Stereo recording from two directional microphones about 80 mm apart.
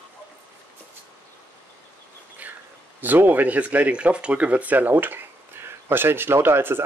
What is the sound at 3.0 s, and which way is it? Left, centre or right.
Speech, right.